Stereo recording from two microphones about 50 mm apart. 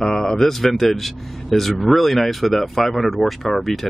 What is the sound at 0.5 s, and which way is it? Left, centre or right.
Speech, centre.